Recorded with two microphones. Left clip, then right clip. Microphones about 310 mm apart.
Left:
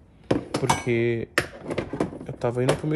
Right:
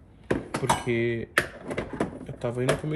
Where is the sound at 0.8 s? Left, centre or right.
Left.